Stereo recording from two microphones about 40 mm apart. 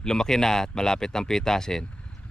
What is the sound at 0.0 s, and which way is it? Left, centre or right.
Speech, centre.